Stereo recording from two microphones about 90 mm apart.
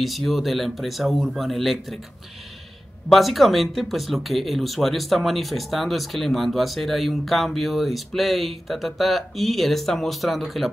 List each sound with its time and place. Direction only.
0.0 s speech: centre (ahead or behind)
3.1 s speech: centre (ahead or behind)